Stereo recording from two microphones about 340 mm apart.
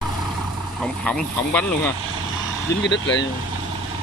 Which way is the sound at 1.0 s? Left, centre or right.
Centre.